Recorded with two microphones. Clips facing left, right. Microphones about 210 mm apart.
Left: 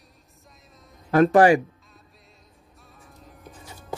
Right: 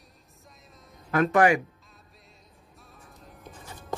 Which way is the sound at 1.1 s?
35° left (ahead or behind).